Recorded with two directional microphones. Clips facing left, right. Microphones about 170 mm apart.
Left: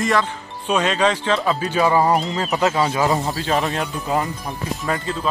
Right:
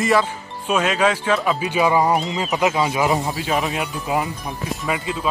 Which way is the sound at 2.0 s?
Centre (ahead or behind).